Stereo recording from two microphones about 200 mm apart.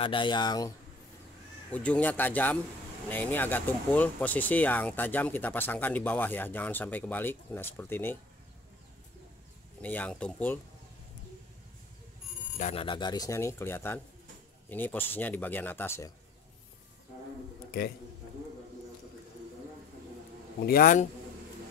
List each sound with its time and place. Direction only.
0.0 s speech: 25° left (ahead or behind)
1.7 s speech: 5° left (ahead or behind)
9.8 s speech: 5° left (ahead or behind)
12.5 s speech: 35° left (ahead or behind)
12.8 s speech: 20° left (ahead or behind)
17.6 s a man's voice: 50° left (ahead or behind)
20.6 s a man's voice: 45° left (ahead or behind)